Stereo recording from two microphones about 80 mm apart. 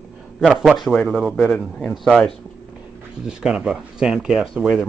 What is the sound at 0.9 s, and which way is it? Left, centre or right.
A man's voice, centre.